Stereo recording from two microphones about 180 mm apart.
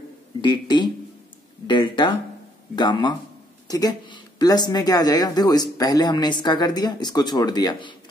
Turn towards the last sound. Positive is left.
turn(degrees=25)  # may be behind; listen again after turning